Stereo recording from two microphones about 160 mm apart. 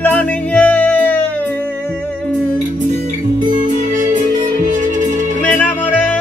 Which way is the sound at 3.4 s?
55° right (ahead or behind).